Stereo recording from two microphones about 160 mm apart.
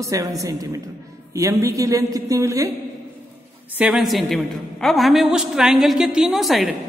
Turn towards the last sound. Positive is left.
turn(degrees=0)  # may be behind; listen again after turning